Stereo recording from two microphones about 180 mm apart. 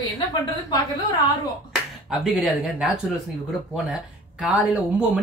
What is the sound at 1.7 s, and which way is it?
Speech, centre (ahead or behind).